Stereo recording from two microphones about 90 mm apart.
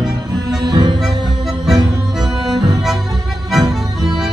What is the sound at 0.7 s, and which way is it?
Music, 50° right (ahead or behind).